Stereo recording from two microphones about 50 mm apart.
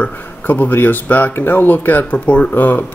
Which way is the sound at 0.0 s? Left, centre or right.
Left.